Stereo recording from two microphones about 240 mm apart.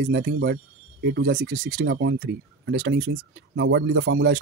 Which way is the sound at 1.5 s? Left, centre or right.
Right.